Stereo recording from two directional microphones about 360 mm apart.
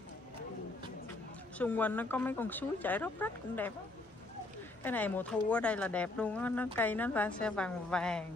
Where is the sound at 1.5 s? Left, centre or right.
Centre.